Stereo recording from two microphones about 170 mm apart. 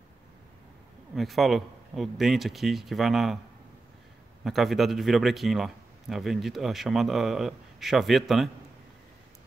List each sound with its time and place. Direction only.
1.1 s a man's voice: centre (ahead or behind)
4.5 s a man's voice: centre (ahead or behind)